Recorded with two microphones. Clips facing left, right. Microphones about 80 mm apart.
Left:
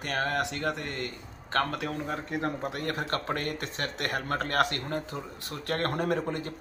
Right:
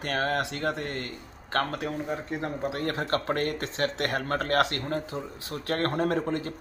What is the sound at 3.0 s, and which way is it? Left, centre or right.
A man's voice, right.